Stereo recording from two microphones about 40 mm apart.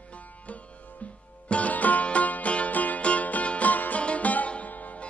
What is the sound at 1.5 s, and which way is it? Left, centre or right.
Music, left.